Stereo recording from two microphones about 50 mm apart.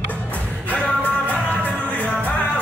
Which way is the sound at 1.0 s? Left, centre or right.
Left.